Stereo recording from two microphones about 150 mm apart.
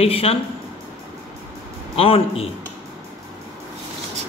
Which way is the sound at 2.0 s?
40° left (ahead or behind).